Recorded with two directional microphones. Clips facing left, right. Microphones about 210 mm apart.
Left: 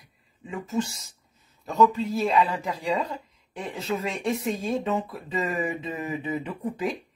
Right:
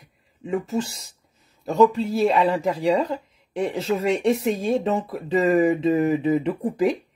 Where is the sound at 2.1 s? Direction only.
35° right (ahead or behind).